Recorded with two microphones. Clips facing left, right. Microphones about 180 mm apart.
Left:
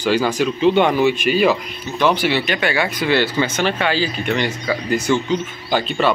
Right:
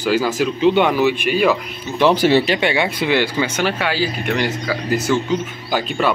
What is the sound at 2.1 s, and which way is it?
Speech, 40° right (ahead or behind).